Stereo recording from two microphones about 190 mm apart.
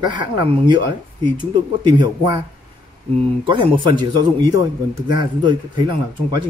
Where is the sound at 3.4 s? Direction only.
25° right (ahead or behind).